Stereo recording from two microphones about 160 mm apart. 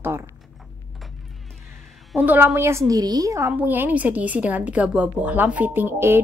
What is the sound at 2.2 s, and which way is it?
A woman's voice, 10° right (ahead or behind).